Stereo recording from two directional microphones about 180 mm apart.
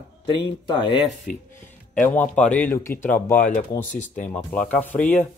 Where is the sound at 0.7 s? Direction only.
25° left (ahead or behind).